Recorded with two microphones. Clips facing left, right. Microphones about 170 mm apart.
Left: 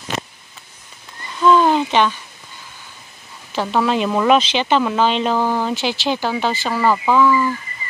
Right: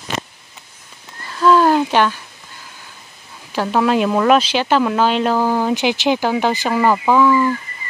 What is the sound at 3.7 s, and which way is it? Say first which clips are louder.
Speech: right 2 dB; 5° right (ahead or behind).